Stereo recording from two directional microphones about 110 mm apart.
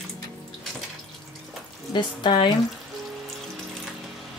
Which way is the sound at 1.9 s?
45° left (ahead or behind).